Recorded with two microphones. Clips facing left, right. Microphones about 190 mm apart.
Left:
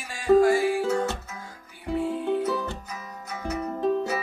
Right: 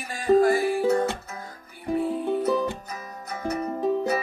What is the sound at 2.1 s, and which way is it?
Music, centre (ahead or behind).